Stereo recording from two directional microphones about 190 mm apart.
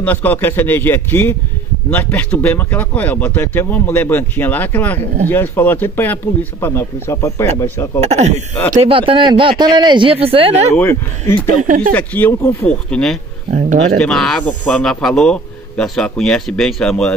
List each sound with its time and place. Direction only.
0.0 s speech: 10° left (ahead or behind)
8.0 s speech: 35° right (ahead or behind)
10.7 s speech: 10° left (ahead or behind)
11.6 s speech: 45° right (ahead or behind)
11.9 s speech: 10° left (ahead or behind)
13.5 s speech: 40° right (ahead or behind)
13.9 s speech: 5° left (ahead or behind)